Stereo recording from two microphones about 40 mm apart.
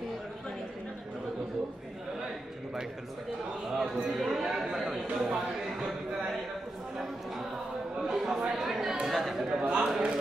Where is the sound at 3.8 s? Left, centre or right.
Centre.